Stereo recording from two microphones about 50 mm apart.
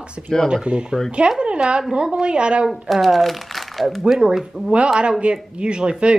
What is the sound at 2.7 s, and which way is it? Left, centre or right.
Speech, centre.